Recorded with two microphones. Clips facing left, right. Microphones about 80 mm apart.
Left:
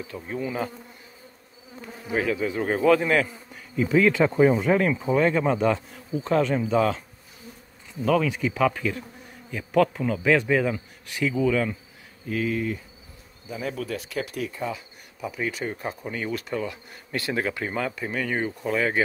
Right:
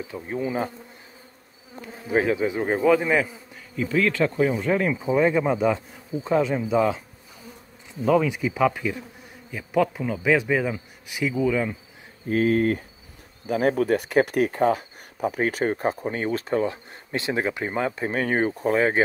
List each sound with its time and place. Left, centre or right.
0.1 s bee: right
2.1 s speech: right; by 3.3 s centre
3.7 s speech: centre
4.6 s speech: centre
8.0 s speech: centre
12.3 s insect: right
13.5 s speech: right